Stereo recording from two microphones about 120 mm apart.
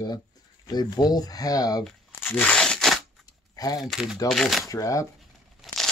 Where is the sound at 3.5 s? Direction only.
30° left (ahead or behind).